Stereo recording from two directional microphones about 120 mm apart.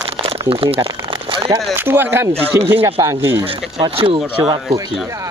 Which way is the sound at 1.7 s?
15° right (ahead or behind).